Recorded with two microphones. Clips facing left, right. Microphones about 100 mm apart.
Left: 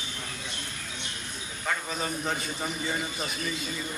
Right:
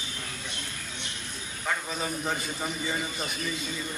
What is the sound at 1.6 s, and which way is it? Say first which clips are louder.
A man's voice: even; centre (ahead or behind).